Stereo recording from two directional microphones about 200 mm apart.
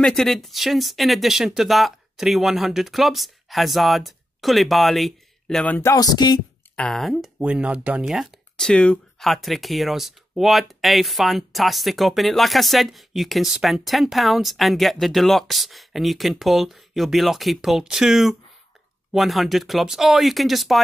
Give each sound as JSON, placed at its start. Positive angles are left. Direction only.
{"t": 0.0, "sound": "speech", "side_deg": 5}
{"t": 5.8, "sound": "a sound", "side_deg": 15}
{"t": 6.8, "sound": "speech", "side_deg": 0}